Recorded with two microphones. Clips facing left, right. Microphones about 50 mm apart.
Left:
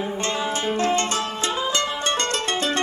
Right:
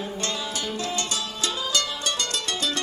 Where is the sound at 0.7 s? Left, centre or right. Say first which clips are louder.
Left 9 dB; left.